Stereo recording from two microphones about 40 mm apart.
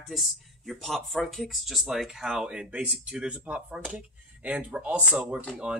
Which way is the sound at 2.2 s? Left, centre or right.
Right.